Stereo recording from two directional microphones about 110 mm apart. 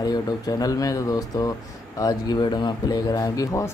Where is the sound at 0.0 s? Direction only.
35° left (ahead or behind).